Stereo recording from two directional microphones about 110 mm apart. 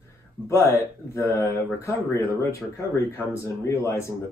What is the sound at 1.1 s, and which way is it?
Speech, 25° left (ahead or behind).